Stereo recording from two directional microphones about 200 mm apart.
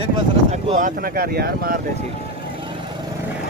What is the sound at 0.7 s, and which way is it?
Speech, 45° right (ahead or behind).